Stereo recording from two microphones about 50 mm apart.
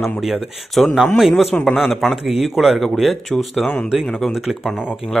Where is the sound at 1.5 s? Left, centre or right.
Left.